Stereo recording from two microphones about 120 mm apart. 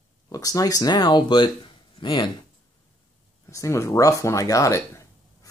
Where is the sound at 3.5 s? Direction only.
25° left (ahead or behind).